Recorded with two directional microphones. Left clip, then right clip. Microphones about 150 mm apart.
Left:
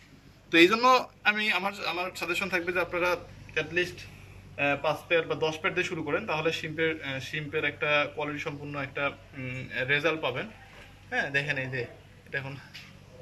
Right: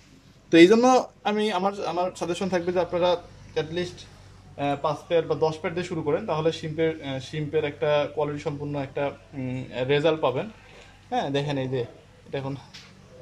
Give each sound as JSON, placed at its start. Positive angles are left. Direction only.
{"t": 0.5, "sound": "speech", "side_deg": -55}